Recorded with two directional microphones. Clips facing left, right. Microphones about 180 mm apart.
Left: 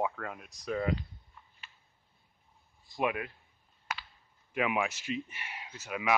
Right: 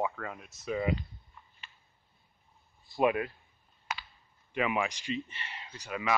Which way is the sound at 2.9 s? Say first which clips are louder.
Right 5 dB; 30° right (ahead or behind).